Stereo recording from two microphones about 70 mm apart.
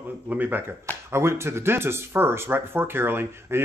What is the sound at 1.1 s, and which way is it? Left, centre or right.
Speech, right.